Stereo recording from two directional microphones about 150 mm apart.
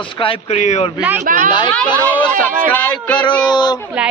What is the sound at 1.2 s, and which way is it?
Speech, 60° right (ahead or behind).